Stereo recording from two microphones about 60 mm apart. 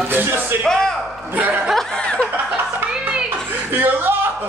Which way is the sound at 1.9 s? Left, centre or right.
Centre.